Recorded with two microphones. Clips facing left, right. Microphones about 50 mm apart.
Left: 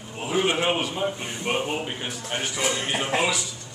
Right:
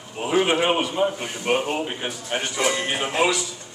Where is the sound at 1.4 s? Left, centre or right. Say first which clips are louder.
Right 4 dB; centre.